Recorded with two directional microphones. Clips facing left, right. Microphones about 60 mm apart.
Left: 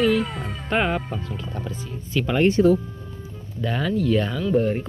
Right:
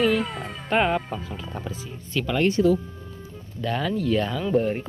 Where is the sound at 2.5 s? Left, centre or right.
Left.